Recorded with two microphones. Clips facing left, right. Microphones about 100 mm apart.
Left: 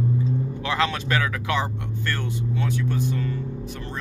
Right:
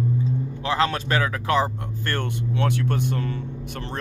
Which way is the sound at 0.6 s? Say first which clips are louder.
Right 3 dB; 35° right (ahead or behind).